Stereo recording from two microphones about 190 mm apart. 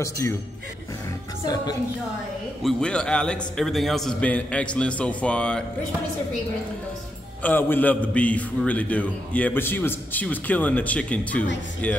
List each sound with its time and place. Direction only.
0.0 s a man's voice: 15° left (ahead or behind)
1.4 s a woman's voice: 20° left (ahead or behind)
2.6 s a man's voice: 5° left (ahead or behind)
7.4 s a man's voice: 10° left (ahead or behind)